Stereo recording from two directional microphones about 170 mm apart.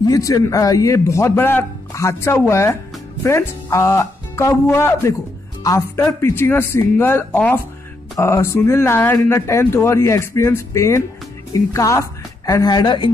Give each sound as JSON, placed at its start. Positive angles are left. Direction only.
{"t": 0.0, "sound": "a man's voice", "side_deg": 20}